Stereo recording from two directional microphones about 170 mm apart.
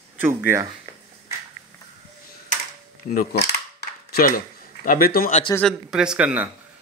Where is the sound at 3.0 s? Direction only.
65° left (ahead or behind).